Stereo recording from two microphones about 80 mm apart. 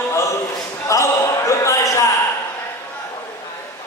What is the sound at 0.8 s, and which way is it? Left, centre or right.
Basketball bounce, left.